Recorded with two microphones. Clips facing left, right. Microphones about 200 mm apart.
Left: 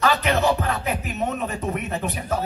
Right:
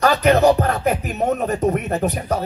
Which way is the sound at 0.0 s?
40° right (ahead or behind).